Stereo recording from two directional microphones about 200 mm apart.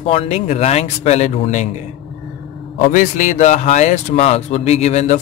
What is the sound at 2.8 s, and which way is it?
Speech, 40° left (ahead or behind).